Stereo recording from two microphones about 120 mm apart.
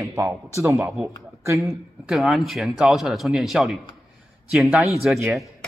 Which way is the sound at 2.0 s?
5° right (ahead or behind).